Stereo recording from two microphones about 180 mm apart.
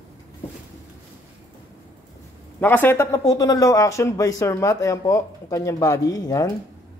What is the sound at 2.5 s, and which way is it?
Speech, 10° left (ahead or behind).